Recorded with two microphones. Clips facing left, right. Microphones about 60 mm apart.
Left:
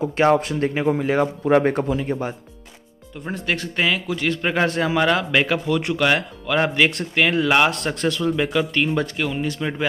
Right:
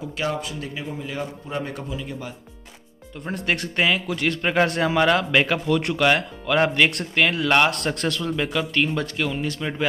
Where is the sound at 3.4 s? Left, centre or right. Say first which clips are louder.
Even; centre.